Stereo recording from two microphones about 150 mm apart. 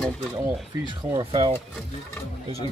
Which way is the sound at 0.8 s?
30° right (ahead or behind).